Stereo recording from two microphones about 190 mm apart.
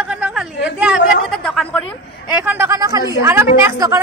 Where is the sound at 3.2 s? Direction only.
15° right (ahead or behind).